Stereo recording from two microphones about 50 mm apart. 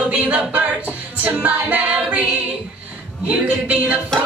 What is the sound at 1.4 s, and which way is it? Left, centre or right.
Speech, right.